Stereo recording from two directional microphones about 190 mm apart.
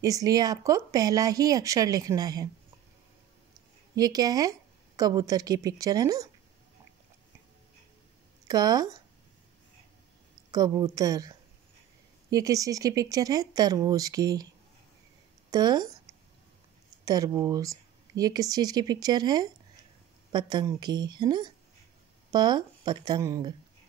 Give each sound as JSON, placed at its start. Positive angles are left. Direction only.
{"t": 0.0, "sound": "speech", "side_deg": -20}
{"t": 3.9, "sound": "speech", "side_deg": -20}
{"t": 8.5, "sound": "speech", "side_deg": -20}
{"t": 10.5, "sound": "speech", "side_deg": -20}
{"t": 15.5, "sound": "a sound", "side_deg": -20}
{"t": 17.0, "sound": "speech", "side_deg": -20}